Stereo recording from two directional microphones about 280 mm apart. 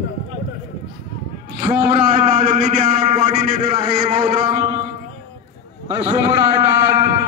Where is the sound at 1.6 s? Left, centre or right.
Right.